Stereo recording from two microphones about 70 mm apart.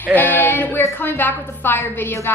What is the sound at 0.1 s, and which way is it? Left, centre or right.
Child singing, left.